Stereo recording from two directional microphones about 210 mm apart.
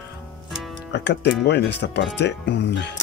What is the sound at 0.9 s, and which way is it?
Speech, 55° left (ahead or behind).